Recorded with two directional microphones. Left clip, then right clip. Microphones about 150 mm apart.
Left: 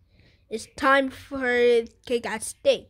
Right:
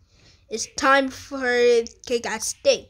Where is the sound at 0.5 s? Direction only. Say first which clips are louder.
Right 2 dB; 20° left (ahead or behind).